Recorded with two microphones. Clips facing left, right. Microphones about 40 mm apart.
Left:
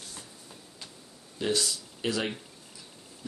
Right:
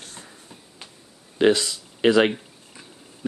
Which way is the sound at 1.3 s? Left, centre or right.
Right.